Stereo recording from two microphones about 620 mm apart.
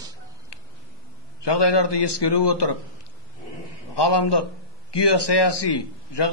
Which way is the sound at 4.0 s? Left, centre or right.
Left.